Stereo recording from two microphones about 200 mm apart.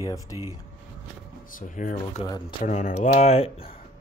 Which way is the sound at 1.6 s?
40° left (ahead or behind).